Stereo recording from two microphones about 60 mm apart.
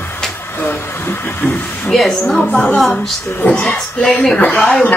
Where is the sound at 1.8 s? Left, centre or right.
Centre.